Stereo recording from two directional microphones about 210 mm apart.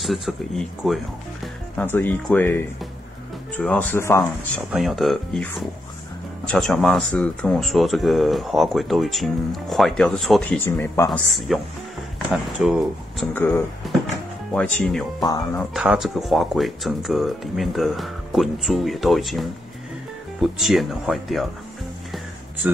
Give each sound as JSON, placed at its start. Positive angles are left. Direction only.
{"t": 0.0, "sound": "speech", "side_deg": 0}
{"t": 1.8, "sound": "speech", "side_deg": 10}
{"t": 4.6, "sound": "speech", "side_deg": 0}
{"t": 11.1, "sound": "speech", "side_deg": 0}
{"t": 15.2, "sound": "speech", "side_deg": 20}
{"t": 15.7, "sound": "speech", "side_deg": 0}